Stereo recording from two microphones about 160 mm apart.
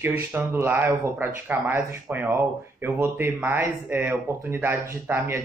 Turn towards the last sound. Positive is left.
turn(degrees=-15)  # may be behind; listen again after turning